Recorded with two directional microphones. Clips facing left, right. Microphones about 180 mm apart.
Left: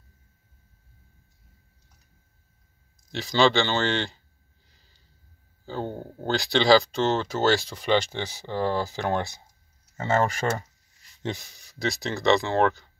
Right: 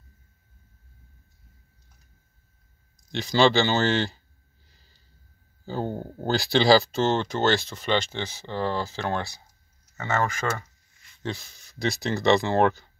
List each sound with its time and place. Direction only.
3.1 s speech: centre (ahead or behind)
5.7 s speech: 5° right (ahead or behind); by 9.4 s 15° left (ahead or behind)
9.9 s a sound: 30° left (ahead or behind)
11.2 s speech: 15° left (ahead or behind)
11.8 s speech: centre (ahead or behind)